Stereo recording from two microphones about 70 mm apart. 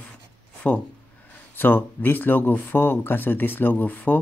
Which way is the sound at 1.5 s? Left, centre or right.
Left.